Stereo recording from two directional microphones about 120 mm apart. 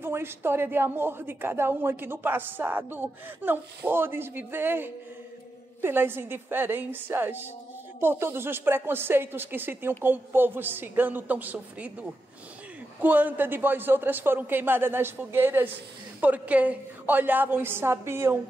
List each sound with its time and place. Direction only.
0.0 s a woman's voice: 20° right (ahead or behind)